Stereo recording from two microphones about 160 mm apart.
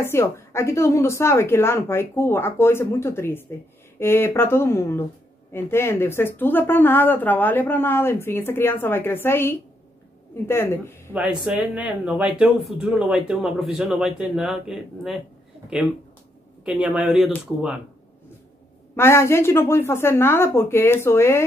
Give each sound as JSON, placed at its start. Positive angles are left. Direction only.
{"t": 0.0, "sound": "a woman's voice", "side_deg": 15}
{"t": 11.4, "sound": "speech", "side_deg": -5}
{"t": 18.9, "sound": "a woman's voice", "side_deg": 15}